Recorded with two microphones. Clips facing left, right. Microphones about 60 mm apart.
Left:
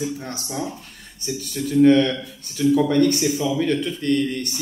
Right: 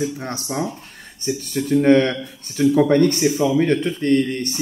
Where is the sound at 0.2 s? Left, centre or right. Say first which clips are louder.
Right 4 dB; right.